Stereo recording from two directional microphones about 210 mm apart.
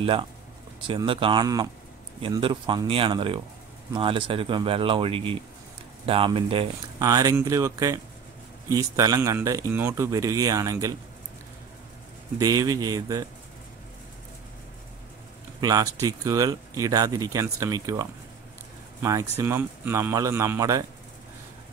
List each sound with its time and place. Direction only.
0.0 s speech: 25° right (ahead or behind)
12.4 s speech: 15° right (ahead or behind)
15.6 s speech: 15° right (ahead or behind)
19.0 s speech: 15° right (ahead or behind)